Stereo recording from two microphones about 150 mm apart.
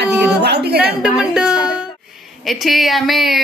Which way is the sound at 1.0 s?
5° right (ahead or behind).